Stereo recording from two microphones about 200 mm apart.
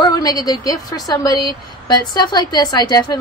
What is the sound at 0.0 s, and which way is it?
A woman's voice, 20° left (ahead or behind).